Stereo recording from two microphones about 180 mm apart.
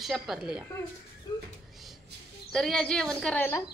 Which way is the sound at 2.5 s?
Centre (ahead or behind).